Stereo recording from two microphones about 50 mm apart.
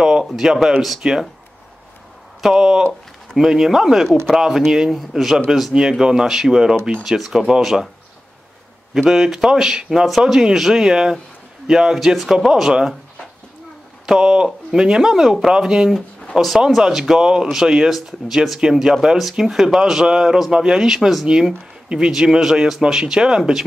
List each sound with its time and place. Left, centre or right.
0.0 s a sound: centre
0.3 s speech: centre
2.5 s speech: centre
8.9 s speech: centre
14.0 s speech: centre
16.3 s speech: centre